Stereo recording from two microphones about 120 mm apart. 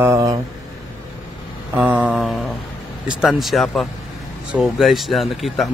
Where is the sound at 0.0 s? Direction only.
25° right (ahead or behind).